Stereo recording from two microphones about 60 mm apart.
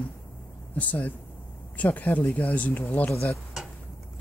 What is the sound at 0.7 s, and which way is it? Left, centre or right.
Speech, left.